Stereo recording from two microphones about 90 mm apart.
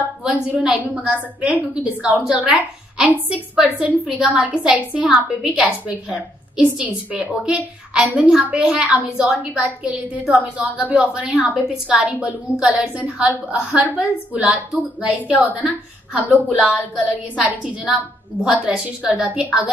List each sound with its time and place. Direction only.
0.2 s a woman's voice: 15° right (ahead or behind)
18.4 s a woman's voice: 10° right (ahead or behind)